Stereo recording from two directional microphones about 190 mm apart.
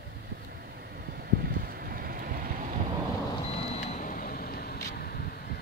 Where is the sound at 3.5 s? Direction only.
35° left (ahead or behind); by 5.4 s 50° left (ahead or behind).